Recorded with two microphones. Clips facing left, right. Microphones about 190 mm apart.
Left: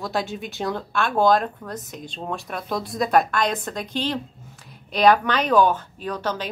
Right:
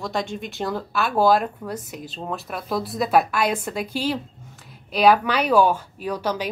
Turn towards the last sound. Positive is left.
turn(degrees=-10)  # may be behind; listen again after turning